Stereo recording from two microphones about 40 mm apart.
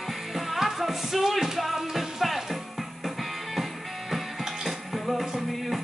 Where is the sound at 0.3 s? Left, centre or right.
Centre.